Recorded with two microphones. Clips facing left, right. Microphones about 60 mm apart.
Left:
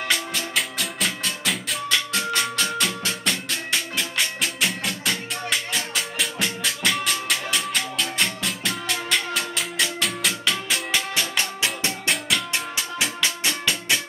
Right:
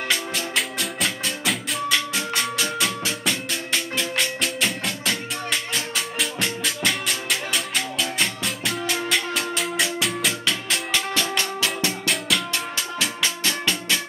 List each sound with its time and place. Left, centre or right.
0.6 s music: centre
10.9 s music: centre
12.1 s music: centre